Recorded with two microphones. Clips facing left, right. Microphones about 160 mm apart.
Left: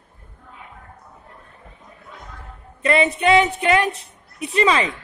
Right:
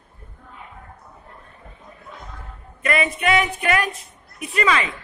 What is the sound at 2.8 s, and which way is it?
Speech, 30° left (ahead or behind).